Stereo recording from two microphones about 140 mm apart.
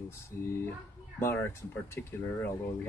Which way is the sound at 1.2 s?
15° left (ahead or behind).